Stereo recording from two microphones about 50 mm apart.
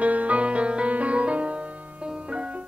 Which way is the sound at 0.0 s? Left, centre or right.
Right.